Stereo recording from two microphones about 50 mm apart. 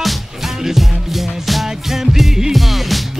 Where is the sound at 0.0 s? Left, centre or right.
Centre.